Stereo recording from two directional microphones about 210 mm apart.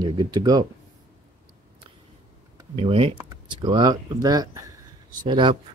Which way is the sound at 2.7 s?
25° right (ahead or behind).